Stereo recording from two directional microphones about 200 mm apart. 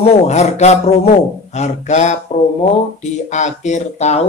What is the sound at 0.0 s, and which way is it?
Speech, 30° left (ahead or behind).